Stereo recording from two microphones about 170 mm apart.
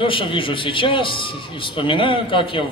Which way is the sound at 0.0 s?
30° left (ahead or behind).